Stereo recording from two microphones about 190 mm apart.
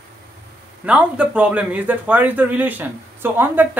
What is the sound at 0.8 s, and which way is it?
Speech, 5° right (ahead or behind).